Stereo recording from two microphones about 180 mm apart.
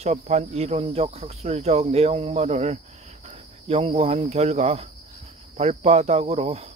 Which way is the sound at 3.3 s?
35° right (ahead or behind).